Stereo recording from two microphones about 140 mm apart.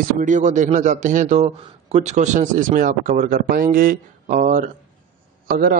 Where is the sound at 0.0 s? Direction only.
65° right (ahead or behind).